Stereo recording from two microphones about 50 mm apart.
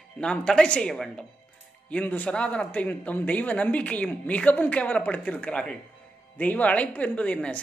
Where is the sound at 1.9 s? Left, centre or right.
Left.